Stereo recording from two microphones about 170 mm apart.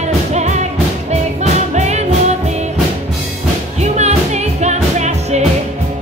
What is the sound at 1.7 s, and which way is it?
Music, 40° right (ahead or behind).